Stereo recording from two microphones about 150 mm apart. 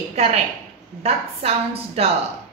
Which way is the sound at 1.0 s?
45° right (ahead or behind).